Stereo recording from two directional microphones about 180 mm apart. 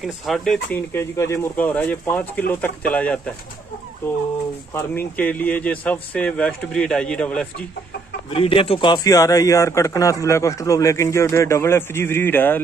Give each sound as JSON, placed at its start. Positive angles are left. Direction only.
{"t": 0.0, "sound": "a man's voice", "side_deg": 0}
{"t": 4.7, "sound": "a man's voice", "side_deg": 10}
{"t": 8.3, "sound": "a man's voice", "side_deg": 30}